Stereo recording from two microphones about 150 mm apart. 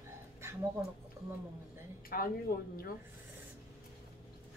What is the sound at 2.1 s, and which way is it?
Speech, 75° left (ahead or behind).